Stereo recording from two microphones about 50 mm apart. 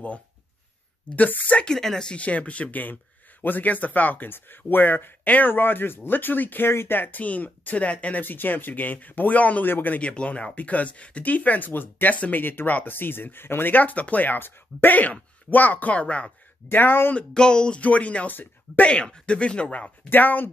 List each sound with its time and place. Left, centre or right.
1.1 s speech: left
1.7 s speech: centre
2.1 s speech: left
6.7 s speech: left
7.0 s speech: left
8.2 s speech: left
9.7 s speech: left
9.9 s speech: left
16.6 s speech: left
17.1 s speech: left
20.1 s speech: left